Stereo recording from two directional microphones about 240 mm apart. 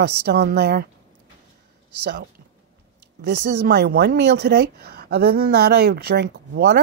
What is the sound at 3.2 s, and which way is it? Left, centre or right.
Speech, right.